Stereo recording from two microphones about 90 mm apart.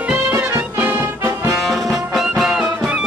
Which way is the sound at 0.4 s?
30° right (ahead or behind).